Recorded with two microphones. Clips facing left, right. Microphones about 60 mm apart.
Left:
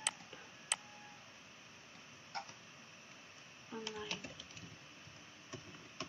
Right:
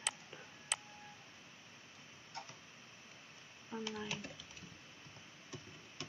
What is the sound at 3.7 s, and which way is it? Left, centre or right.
Speech, centre.